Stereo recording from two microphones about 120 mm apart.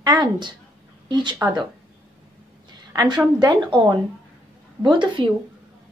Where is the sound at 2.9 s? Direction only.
35° right (ahead or behind).